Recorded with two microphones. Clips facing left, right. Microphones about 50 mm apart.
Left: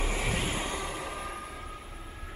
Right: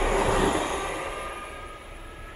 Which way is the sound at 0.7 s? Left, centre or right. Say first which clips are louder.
Right 5 dB; right.